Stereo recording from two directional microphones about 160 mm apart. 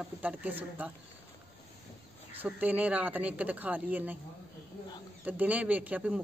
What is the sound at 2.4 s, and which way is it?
Speech, 10° right (ahead or behind).